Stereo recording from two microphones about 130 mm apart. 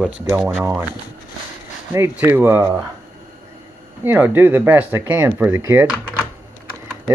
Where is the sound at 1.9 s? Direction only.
20° right (ahead or behind).